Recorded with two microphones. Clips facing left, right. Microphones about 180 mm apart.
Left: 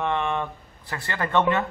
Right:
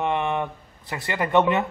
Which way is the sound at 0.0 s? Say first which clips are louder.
Right 1 dB; 20° right (ahead or behind).